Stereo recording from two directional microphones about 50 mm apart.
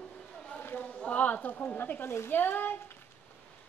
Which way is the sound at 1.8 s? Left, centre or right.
Left.